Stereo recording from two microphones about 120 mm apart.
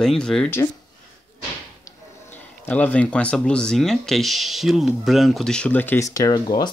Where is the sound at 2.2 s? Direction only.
15° left (ahead or behind).